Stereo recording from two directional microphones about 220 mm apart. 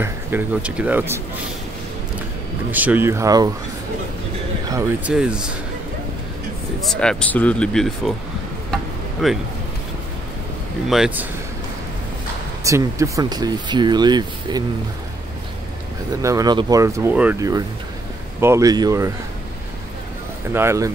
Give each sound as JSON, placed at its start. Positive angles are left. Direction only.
{"t": 0.0, "sound": "speech", "side_deg": -10}
{"t": 2.7, "sound": "speech", "side_deg": -10}
{"t": 4.6, "sound": "speech", "side_deg": -15}
{"t": 6.9, "sound": "speech", "side_deg": 5}
{"t": 9.2, "sound": "speech", "side_deg": 0}
{"t": 10.9, "sound": "speech", "side_deg": -5}
{"t": 12.6, "sound": "speech", "side_deg": -15}
{"t": 16.2, "sound": "speech", "side_deg": -15}
{"t": 20.5, "sound": "speech", "side_deg": -15}